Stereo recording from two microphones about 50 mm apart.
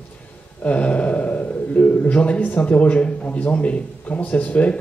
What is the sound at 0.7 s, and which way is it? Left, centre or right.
A man's voice, left.